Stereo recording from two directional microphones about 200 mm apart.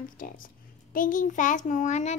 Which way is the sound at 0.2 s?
45° left (ahead or behind).